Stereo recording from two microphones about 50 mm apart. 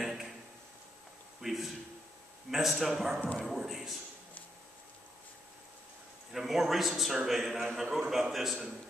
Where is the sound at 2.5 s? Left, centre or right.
Centre.